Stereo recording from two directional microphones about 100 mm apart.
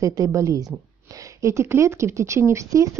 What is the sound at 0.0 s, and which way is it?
Speech, 35° right (ahead or behind).